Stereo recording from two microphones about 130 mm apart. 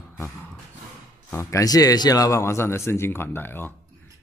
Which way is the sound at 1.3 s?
25° left (ahead or behind).